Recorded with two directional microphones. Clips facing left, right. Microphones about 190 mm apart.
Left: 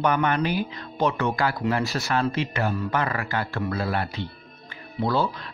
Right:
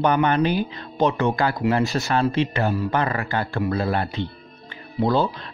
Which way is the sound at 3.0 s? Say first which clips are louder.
Right 3 dB; 30° right (ahead or behind).